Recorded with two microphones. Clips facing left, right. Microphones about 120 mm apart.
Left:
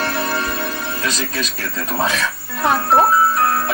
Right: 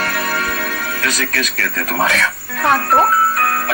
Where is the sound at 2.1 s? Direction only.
65° right (ahead or behind).